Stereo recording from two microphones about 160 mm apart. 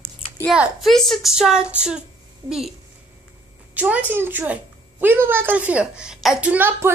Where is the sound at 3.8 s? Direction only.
10° right (ahead or behind).